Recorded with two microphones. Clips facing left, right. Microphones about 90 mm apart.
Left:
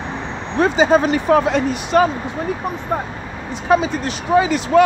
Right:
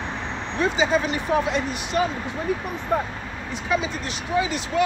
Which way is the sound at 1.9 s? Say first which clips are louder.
Left 8 dB; 75° left (ahead or behind).